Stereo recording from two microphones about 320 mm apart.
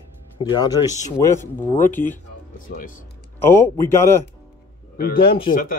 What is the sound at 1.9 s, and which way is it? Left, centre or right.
Speech, centre.